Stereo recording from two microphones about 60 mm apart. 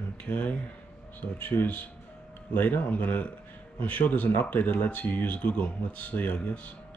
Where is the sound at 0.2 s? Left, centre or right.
Left.